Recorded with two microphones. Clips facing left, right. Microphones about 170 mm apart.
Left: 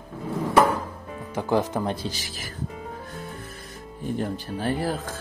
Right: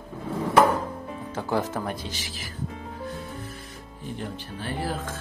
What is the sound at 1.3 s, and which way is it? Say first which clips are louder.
Speech: left 4 dB; 15° left (ahead or behind).